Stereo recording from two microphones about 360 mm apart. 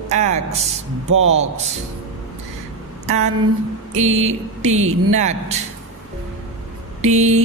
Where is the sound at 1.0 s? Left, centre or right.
Right.